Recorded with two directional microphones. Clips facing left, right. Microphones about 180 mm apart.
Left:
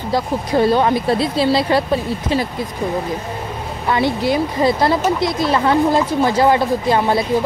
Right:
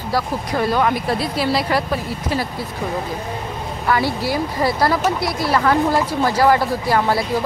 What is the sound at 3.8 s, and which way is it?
Speech, 20° left (ahead or behind).